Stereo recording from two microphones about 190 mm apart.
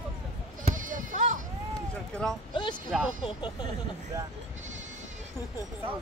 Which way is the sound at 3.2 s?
25° left (ahead or behind).